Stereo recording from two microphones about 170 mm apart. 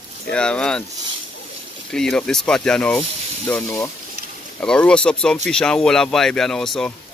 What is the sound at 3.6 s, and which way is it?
Speech, 20° left (ahead or behind).